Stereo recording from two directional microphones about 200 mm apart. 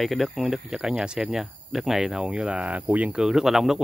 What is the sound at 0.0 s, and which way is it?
Speech, centre (ahead or behind).